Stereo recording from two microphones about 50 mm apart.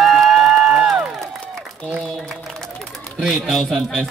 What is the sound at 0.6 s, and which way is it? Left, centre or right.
Music, centre.